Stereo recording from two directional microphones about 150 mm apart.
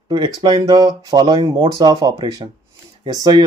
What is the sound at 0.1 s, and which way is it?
Speech, 30° right (ahead or behind).